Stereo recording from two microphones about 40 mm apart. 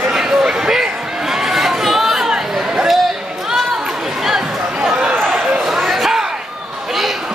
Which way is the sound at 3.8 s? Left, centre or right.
Centre.